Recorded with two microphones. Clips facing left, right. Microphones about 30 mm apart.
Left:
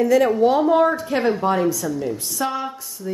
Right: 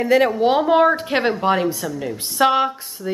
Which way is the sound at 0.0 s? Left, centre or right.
Right.